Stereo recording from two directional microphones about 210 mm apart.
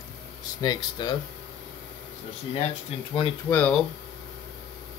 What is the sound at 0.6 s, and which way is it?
Speech, 20° left (ahead or behind).